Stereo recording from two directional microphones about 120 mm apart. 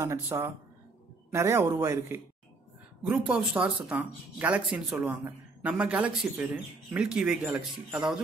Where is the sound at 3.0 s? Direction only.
10° right (ahead or behind).